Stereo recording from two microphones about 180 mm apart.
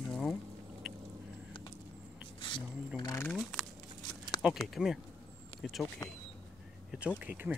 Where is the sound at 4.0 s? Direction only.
25° left (ahead or behind).